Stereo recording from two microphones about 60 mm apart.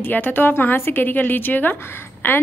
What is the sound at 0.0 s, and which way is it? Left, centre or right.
A woman's voice, left.